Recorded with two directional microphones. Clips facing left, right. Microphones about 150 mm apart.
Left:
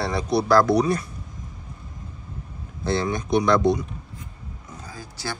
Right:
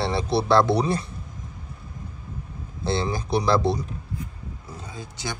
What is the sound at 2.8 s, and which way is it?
Speech, 30° right (ahead or behind).